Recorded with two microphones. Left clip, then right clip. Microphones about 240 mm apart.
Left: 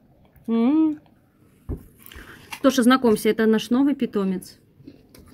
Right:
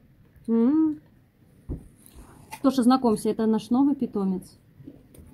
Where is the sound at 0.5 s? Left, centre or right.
Centre.